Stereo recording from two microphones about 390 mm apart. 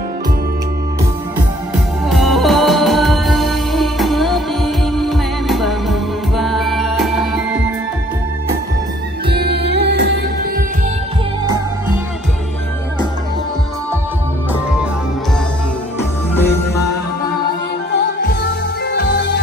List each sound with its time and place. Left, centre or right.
2.0 s music: centre
9.3 s music: right
16.3 s music: centre
18.9 s music: left